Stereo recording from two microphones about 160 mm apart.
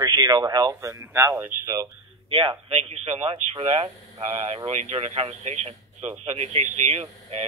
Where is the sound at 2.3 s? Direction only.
35° right (ahead or behind).